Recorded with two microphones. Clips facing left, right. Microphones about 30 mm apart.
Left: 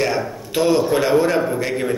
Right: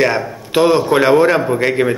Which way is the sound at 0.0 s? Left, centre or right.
Right.